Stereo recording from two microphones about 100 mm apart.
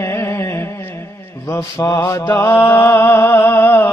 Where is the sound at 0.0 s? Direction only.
25° left (ahead or behind).